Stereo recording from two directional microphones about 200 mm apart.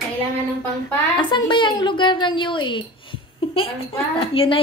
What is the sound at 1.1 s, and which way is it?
A woman's voice, 25° left (ahead or behind).